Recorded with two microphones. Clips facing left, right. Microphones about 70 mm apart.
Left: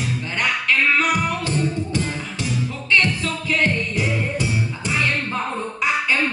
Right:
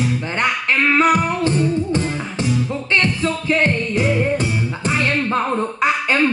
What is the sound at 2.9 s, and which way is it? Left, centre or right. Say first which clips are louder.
Music: right 1 dB; right.